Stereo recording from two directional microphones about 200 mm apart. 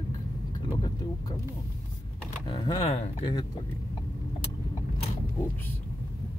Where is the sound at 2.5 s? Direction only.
20° left (ahead or behind).